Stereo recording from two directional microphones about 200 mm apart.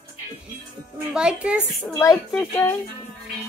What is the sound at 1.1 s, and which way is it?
Speech, 5° right (ahead or behind).